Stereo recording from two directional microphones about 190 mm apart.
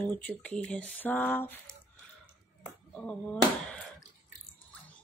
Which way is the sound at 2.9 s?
5° left (ahead or behind).